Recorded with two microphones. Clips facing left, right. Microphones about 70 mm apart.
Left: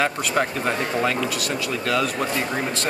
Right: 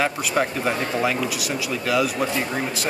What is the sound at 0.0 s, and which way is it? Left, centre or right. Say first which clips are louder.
Speech: even; centre.